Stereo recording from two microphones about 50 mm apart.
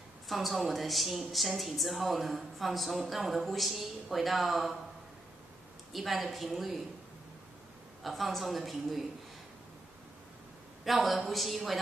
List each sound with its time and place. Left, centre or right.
0.3 s a woman's voice: centre
5.9 s a woman's voice: centre
8.0 s a woman's voice: centre
10.9 s a woman's voice: centre